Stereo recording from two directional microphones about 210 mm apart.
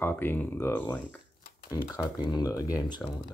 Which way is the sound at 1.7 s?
20° left (ahead or behind).